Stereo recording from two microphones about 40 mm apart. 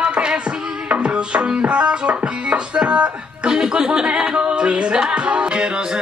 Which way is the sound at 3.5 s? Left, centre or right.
Centre.